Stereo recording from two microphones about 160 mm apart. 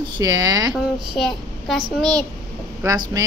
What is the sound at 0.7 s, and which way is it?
A woman's voice, centre (ahead or behind).